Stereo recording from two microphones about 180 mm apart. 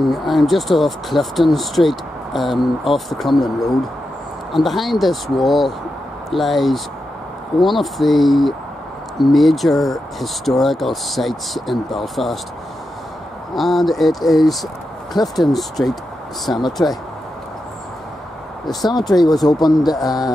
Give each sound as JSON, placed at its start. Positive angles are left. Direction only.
{"t": 0.0, "sound": "speech", "side_deg": 0}
{"t": 4.6, "sound": "speech", "side_deg": 0}
{"t": 13.6, "sound": "speech", "side_deg": 0}
{"t": 18.9, "sound": "speech", "side_deg": 20}